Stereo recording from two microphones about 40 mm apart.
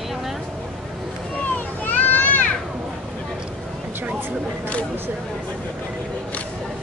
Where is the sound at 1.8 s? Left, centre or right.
Left.